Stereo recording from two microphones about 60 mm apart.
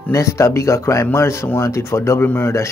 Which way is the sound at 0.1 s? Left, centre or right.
Left.